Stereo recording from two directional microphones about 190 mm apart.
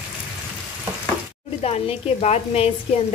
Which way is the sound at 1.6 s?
30° left (ahead or behind).